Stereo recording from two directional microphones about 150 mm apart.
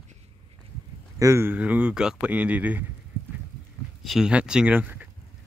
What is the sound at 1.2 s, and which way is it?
Speech, 20° right (ahead or behind).